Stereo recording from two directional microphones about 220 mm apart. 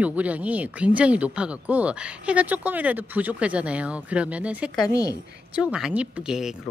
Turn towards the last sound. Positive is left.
turn(degrees=-5)  # may be behind; listen again after turning